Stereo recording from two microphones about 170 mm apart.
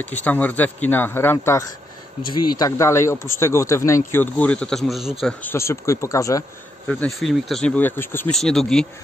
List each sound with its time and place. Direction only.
0.0 s speech: 10° left (ahead or behind)
5.2 s speech: 10° left (ahead or behind)
6.9 s speech: 5° left (ahead or behind)
8.3 s speech: centre (ahead or behind)